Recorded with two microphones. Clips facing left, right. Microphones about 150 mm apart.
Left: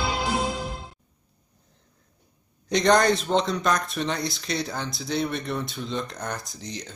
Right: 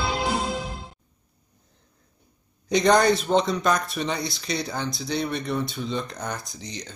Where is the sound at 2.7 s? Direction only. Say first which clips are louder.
Right 1 dB; centre (ahead or behind).